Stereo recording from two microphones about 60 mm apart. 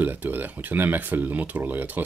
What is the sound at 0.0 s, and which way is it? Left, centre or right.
Speech, right.